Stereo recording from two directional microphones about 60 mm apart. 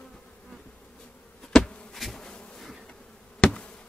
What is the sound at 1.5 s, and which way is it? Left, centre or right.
Bee, centre.